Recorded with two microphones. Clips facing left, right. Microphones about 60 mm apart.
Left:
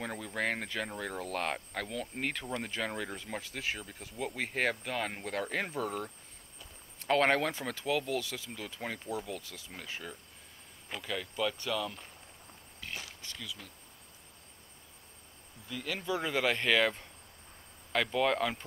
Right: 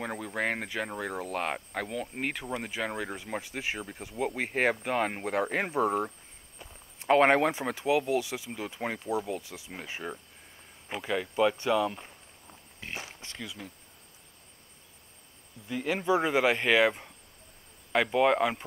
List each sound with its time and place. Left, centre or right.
0.0 s speech: centre
15.7 s speech: right